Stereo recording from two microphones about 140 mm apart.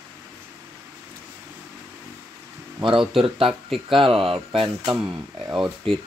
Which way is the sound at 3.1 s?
40° right (ahead or behind).